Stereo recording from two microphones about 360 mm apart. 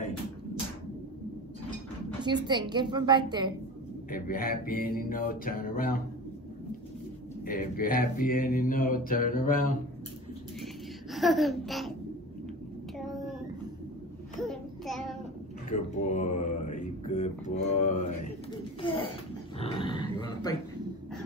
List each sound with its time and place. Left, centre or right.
2.2 s a woman's voice: centre
4.1 s mantra: left
7.4 s mantra: left
10.6 s a sound: centre
12.9 s child singing: centre
14.5 s child singing: centre
15.7 s speech: left
19.6 s dog: centre